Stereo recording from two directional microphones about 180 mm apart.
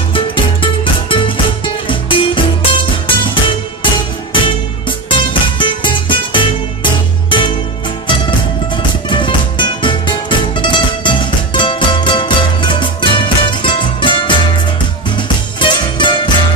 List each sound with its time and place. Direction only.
0.1 s music: 30° left (ahead or behind)
4.8 s music: 30° left (ahead or behind)
8.7 s music: 25° left (ahead or behind)